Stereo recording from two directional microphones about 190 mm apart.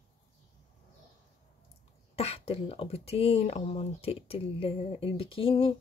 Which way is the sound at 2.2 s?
30° left (ahead or behind).